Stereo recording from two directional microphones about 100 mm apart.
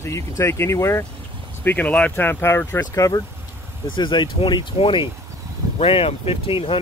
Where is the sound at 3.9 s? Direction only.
50° left (ahead or behind).